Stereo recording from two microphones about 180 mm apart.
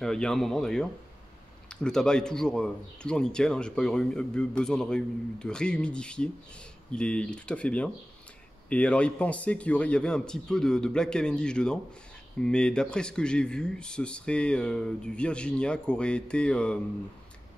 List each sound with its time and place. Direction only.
0.0 s speech: 5° left (ahead or behind)